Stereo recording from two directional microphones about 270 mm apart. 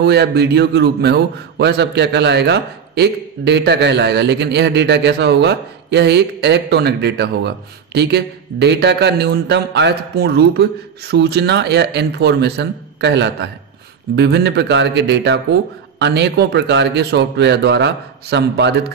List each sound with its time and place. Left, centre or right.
0.0 s a man's voice: right